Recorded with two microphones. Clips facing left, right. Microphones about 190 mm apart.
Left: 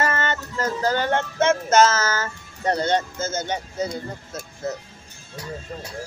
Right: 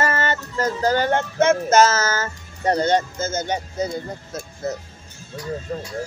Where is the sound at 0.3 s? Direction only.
15° right (ahead or behind).